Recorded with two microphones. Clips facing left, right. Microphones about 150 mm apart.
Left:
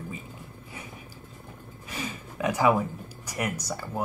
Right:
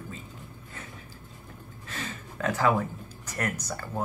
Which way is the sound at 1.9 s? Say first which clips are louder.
Left 3 dB; 15° left (ahead or behind).